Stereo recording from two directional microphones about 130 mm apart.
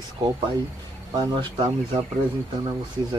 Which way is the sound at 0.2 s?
30° right (ahead or behind).